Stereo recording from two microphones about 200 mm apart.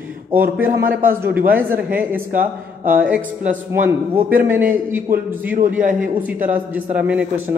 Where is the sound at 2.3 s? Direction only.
45° right (ahead or behind).